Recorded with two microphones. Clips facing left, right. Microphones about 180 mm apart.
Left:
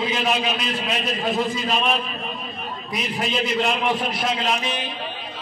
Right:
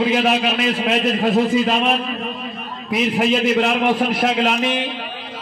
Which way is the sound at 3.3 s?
75° right (ahead or behind).